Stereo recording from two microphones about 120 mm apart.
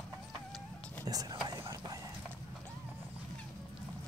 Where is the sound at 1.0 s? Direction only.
30° right (ahead or behind).